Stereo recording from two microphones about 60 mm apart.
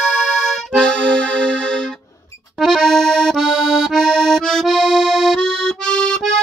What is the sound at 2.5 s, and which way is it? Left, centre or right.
Accordion, centre.